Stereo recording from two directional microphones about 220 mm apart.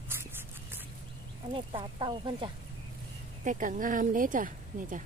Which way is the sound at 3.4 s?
35° right (ahead or behind).